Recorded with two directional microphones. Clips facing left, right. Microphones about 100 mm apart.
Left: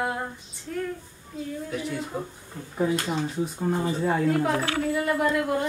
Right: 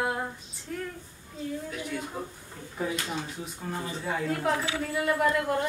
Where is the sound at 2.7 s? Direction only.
40° left (ahead or behind).